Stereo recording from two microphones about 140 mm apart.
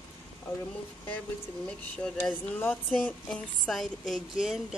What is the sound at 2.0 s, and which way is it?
Speech, 10° left (ahead or behind).